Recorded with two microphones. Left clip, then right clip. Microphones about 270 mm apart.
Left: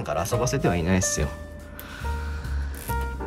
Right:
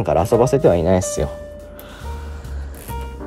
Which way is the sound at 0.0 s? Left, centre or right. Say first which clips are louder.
Right 10 dB; centre.